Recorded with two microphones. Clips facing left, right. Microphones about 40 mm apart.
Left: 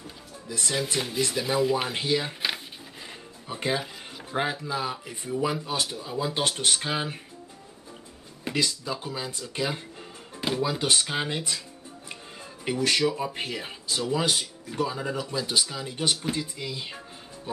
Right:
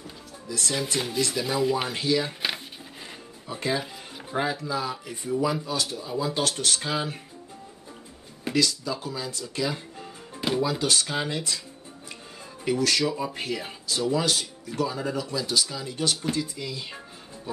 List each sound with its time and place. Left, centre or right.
0.5 s speech: left
0.9 s speech: centre
1.6 s speech: centre
2.0 s speech: left
3.4 s speech: left
3.7 s music: centre
4.4 s speech: left
5.9 s speech: centre
8.5 s speech: left
10.3 s music: centre
10.6 s speech: left
12.6 s speech: left
15.1 s speech: left